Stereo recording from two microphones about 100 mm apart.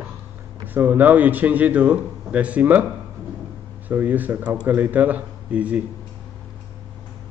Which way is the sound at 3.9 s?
15° right (ahead or behind).